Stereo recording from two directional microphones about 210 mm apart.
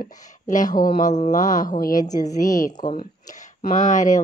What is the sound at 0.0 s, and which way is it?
Speech, 40° left (ahead or behind).